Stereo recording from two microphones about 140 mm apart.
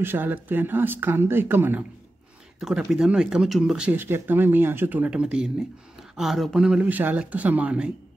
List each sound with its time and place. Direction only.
0.0 s speech: 15° right (ahead or behind)